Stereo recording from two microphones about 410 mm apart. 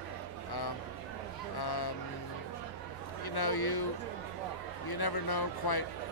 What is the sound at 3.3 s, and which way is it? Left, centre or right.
Speech, left.